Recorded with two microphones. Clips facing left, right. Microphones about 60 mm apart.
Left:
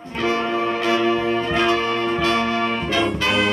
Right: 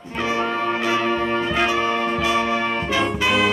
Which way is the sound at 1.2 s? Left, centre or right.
Centre.